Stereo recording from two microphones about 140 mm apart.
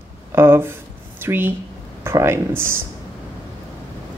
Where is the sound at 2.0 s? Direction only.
20° right (ahead or behind).